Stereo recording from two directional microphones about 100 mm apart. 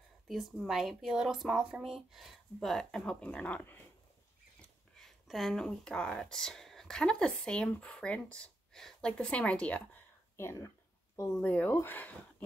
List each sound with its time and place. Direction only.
0.3 s speech: centre (ahead or behind); by 3.8 s 15° left (ahead or behind)
4.6 s speech: 5° left (ahead or behind)
10.3 s speech: 25° left (ahead or behind)
11.4 s speech: 15° left (ahead or behind)